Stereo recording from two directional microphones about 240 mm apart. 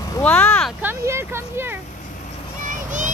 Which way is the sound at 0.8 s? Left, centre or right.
Centre.